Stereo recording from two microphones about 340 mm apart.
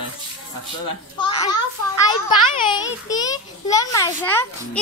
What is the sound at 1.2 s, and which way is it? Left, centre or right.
A child's voice, centre.